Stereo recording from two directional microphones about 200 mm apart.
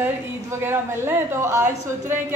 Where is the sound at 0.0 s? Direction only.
10° right (ahead or behind).